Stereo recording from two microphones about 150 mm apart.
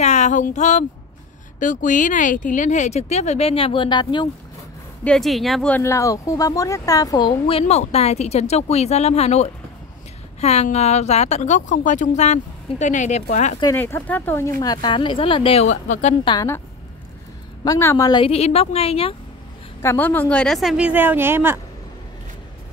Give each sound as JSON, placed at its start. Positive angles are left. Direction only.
{"t": 0.0, "sound": "speech", "side_deg": 50}
{"t": 5.0, "sound": "a woman's voice", "side_deg": 5}
{"t": 5.8, "sound": "speech", "side_deg": 20}
{"t": 13.7, "sound": "speech", "side_deg": 15}
{"t": 15.6, "sound": "speech", "side_deg": 55}
{"t": 17.6, "sound": "speech", "side_deg": 20}
{"t": 18.2, "sound": "speech", "side_deg": 45}
{"t": 19.8, "sound": "a woman's voice", "side_deg": 15}